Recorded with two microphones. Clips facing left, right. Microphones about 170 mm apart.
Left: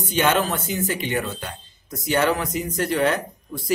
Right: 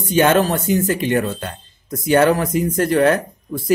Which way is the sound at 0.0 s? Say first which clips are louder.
Right 6 dB; 45° right (ahead or behind).